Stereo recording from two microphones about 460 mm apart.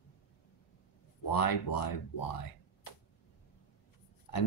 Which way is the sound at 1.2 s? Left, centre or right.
Left.